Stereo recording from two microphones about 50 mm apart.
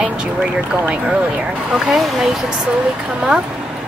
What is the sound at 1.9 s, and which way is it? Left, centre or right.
Speech, centre.